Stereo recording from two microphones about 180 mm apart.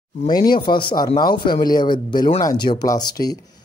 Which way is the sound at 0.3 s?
25° left (ahead or behind).